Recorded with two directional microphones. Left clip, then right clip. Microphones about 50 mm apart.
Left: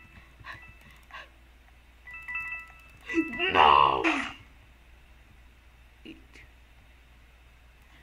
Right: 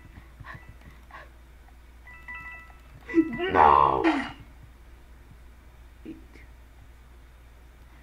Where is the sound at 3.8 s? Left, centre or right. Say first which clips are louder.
Right 2 dB; centre.